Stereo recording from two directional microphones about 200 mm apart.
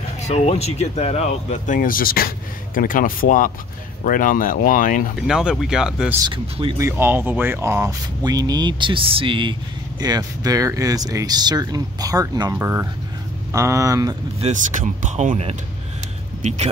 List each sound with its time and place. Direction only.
0.3 s speech: 35° left (ahead or behind)
5.2 s speech: 5° right (ahead or behind)
6.2 s speech: 25° right (ahead or behind)
6.8 s speech: 10° right (ahead or behind)
14.4 s speech: 40° right (ahead or behind)